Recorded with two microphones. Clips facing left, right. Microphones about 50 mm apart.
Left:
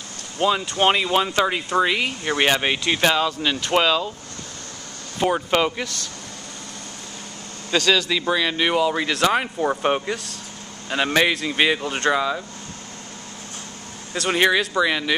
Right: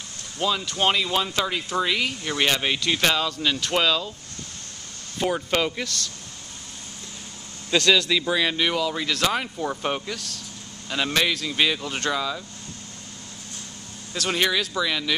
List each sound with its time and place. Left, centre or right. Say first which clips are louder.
0.4 s speech: left 4 dB; left
5.2 s speech: left 4 dB; centre
7.7 s speech: even; centre
8.5 s speech: left 4 dB; left
14.1 s speech: left 5 dB; centre